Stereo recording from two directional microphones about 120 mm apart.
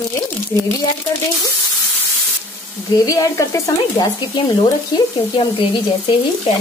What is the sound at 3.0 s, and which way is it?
Speech, 30° left (ahead or behind).